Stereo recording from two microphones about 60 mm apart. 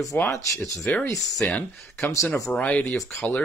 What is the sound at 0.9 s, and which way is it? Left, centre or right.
Speech, left.